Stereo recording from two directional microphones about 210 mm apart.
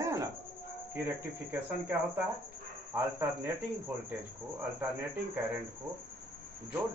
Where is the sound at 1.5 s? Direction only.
10° right (ahead or behind).